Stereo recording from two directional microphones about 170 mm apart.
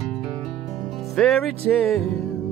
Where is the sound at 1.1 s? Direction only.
Centre (ahead or behind).